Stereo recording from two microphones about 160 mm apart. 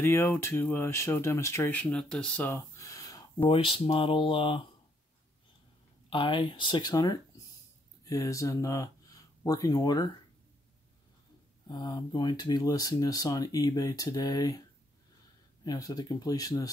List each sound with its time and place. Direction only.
0.0 s speech: 15° left (ahead or behind); by 4.6 s 30° left (ahead or behind)
6.0 s speech: 30° left (ahead or behind)
11.7 s speech: 25° left (ahead or behind)
15.6 s speech: 25° left (ahead or behind)